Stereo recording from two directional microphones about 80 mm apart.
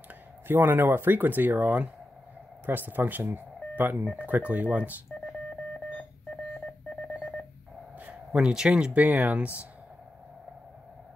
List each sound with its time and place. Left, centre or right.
0.1 s speech: right
8.0 s speech: centre